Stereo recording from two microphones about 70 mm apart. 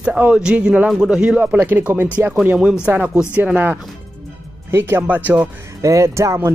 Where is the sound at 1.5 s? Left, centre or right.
Right.